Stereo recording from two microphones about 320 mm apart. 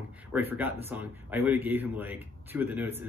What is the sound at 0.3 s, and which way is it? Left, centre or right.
Speech, centre.